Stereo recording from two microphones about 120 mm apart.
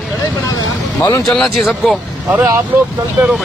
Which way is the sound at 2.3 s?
20° right (ahead or behind).